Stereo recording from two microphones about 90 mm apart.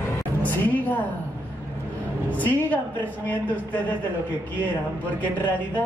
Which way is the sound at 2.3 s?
20° left (ahead or behind).